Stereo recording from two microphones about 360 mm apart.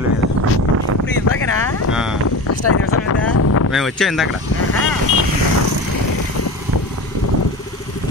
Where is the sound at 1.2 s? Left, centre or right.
Left.